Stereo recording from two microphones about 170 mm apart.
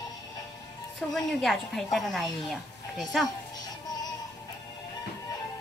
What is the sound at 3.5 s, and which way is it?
Music, 25° left (ahead or behind).